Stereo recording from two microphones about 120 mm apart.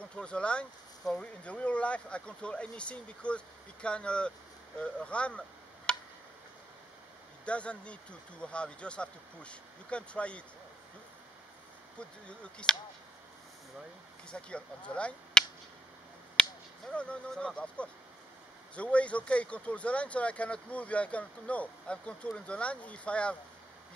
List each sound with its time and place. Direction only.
0.1 s speech: 10° left (ahead or behind)
5.9 s tick: 5° left (ahead or behind)
7.4 s speech: 10° left (ahead or behind)
12.0 s speech: 10° left (ahead or behind)
14.3 s speech: 10° left (ahead or behind)
16.3 s a sound: 10° left (ahead or behind)
18.8 s speech: 10° left (ahead or behind)